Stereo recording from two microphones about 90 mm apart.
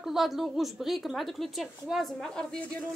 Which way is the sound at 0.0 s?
Centre (ahead or behind).